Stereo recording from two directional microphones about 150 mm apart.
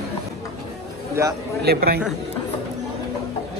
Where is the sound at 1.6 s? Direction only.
90° right.